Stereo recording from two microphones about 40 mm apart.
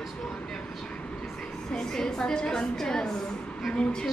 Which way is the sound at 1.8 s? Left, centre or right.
Centre.